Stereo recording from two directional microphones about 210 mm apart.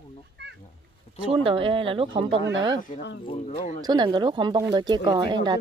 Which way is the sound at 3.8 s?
20° right (ahead or behind).